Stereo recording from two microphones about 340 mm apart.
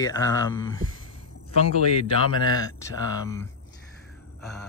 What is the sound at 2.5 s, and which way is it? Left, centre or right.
Speech, centre.